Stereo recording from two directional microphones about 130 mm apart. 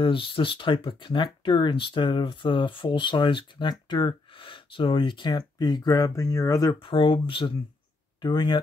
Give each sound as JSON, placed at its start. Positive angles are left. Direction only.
{"t": 0.0, "sound": "speech", "side_deg": 40}
{"t": 6.8, "sound": "speech", "side_deg": 40}